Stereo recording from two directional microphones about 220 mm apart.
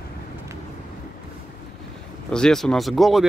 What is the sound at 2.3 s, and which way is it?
Speech, 5° left (ahead or behind).